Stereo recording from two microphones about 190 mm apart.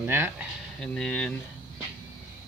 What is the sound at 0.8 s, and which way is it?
Speech, 5° left (ahead or behind).